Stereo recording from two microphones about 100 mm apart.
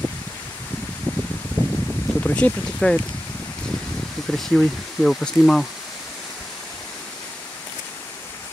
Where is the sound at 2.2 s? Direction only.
10° left (ahead or behind).